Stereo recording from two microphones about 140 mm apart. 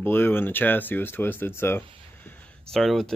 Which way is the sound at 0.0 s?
15° left (ahead or behind).